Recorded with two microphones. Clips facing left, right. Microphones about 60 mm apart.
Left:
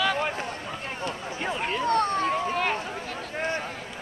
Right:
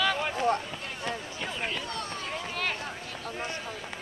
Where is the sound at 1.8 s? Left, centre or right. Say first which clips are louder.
Left 12 dB; left.